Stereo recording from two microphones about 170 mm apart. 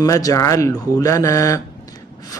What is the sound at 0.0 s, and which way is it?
A man's voice, 20° left (ahead or behind).